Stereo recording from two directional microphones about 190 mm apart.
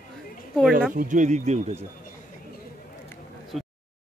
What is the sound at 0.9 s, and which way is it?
Speech, 40° right (ahead or behind).